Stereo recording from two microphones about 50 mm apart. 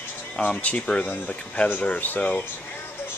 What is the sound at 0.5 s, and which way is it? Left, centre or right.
Speech, left.